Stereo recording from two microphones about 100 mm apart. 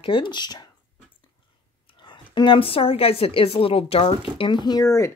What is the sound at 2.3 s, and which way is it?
Speech, 55° left (ahead or behind).